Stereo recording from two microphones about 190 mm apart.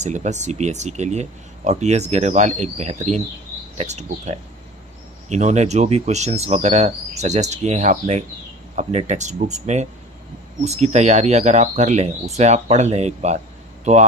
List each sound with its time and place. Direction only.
0.0 s speech: 35° right (ahead or behind)